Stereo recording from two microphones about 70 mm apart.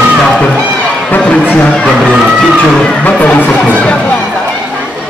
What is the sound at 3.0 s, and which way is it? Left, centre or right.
Speech, left.